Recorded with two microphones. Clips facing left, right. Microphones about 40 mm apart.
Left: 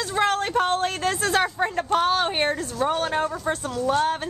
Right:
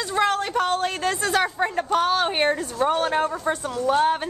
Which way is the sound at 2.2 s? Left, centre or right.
Centre.